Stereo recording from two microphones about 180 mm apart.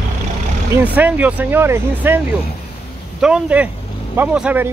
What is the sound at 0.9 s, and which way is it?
Speech, 10° right (ahead or behind).